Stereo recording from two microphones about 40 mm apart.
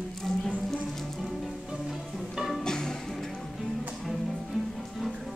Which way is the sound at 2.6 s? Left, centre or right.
Centre.